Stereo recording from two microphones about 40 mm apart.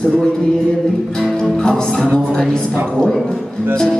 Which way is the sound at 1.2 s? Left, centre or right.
Centre.